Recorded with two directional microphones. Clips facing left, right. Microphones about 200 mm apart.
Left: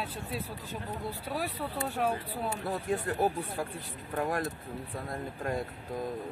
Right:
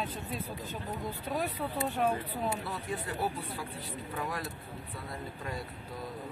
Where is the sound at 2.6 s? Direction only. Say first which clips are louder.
Left 6 dB; 45° left (ahead or behind).